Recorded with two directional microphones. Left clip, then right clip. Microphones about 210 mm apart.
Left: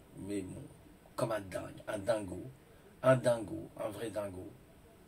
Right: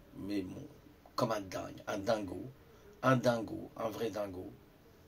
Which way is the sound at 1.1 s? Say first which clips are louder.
Right 1 dB; 50° right (ahead or behind).